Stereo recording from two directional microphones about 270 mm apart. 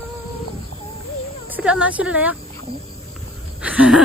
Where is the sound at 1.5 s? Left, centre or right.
Centre.